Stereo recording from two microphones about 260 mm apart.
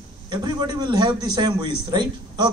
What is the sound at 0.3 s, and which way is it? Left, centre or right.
A man's voice, centre.